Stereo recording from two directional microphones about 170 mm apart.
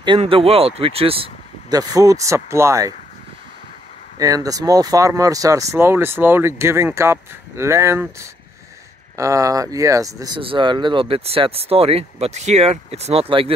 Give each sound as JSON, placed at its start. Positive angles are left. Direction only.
{"t": 0.0, "sound": "speech", "side_deg": -30}
{"t": 4.2, "sound": "speech", "side_deg": -20}